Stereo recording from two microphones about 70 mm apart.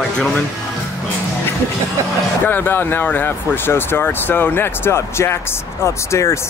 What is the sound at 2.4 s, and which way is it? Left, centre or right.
Speech, left.